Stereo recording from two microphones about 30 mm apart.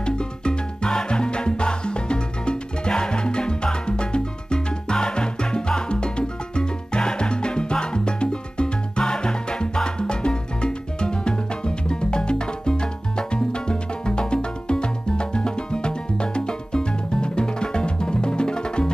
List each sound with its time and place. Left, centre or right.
0.0 s music: left